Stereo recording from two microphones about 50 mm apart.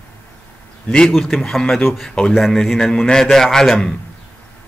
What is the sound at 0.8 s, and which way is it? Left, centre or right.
Speech, centre.